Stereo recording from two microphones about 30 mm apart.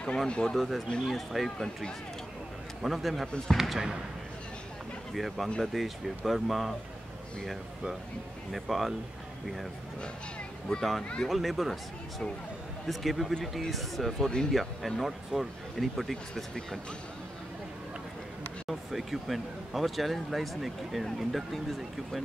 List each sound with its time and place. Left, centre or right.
0.3 s speech: left
0.6 s speech: centre
0.8 s speech: centre
1.1 s speech: centre
2.8 s speech: centre
5.1 s speech: centre
8.5 s speech: centre
10.8 s speech: centre
12.8 s speech: centre
14.1 s speech: left
14.5 s speech: centre
18.7 s speech: centre